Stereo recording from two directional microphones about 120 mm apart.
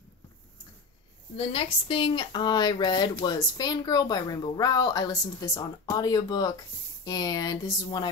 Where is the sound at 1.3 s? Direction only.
50° left (ahead or behind).